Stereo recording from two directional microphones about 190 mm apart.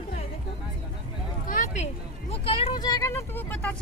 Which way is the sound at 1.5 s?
45° left (ahead or behind).